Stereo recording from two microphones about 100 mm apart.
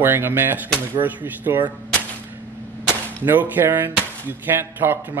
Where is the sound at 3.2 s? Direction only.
20° right (ahead or behind).